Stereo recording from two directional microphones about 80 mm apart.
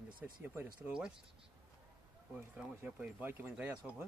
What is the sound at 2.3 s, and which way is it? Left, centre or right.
Speech, centre.